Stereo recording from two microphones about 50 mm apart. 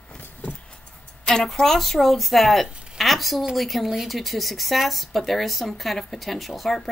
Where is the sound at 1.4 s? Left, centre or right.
Centre.